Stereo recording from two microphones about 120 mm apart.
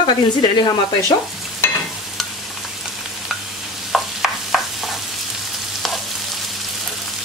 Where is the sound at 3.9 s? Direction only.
Centre (ahead or behind).